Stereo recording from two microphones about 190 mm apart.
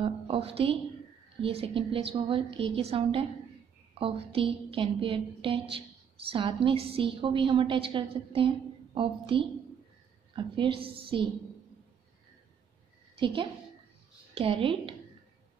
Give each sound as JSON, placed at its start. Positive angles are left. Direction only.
{"t": 0.0, "sound": "a woman's voice", "side_deg": -30}
{"t": 13.1, "sound": "a woman's voice", "side_deg": -25}